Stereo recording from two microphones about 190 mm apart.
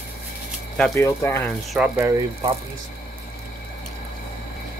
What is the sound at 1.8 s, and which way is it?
Speech, 10° right (ahead or behind).